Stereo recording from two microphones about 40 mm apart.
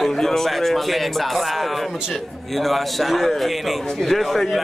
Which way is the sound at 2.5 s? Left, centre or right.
Centre.